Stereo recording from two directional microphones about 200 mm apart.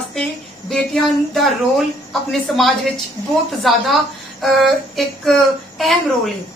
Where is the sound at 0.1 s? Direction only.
Centre (ahead or behind).